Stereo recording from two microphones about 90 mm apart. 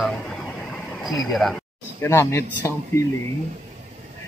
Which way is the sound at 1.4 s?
Centre (ahead or behind).